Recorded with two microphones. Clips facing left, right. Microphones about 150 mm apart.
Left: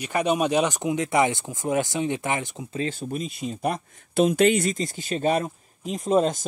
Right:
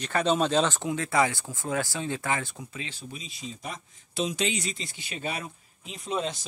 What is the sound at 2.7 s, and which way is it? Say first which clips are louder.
Speech: left 11 dB; 45° left (ahead or behind).